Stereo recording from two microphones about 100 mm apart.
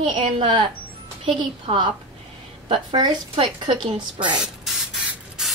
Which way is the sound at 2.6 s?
55° right (ahead or behind).